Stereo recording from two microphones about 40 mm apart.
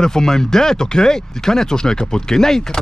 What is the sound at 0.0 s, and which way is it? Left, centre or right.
Speech, centre.